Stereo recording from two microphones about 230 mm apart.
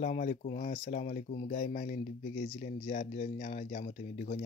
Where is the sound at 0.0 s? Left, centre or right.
Left.